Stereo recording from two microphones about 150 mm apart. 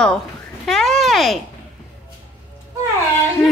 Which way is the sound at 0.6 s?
Centre (ahead or behind).